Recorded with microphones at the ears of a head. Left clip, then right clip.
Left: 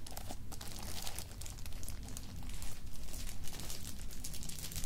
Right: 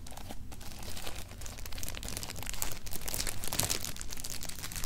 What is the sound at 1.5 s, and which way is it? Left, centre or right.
Crumpling, right.